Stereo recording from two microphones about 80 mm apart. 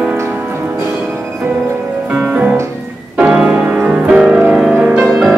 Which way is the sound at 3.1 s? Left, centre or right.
Centre.